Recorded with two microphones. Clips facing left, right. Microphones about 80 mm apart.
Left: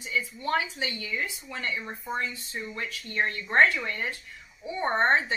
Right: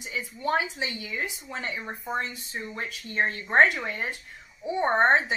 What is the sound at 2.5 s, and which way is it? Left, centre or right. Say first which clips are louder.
A woman's voice: right 1 dB; right.